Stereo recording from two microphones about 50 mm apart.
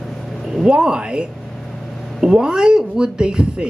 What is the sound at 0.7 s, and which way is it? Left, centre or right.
Speech, centre.